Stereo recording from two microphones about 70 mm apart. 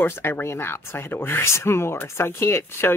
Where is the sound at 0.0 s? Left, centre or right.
Left.